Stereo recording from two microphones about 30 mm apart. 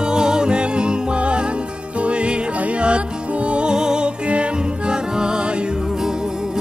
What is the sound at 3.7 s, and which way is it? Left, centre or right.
Music, right.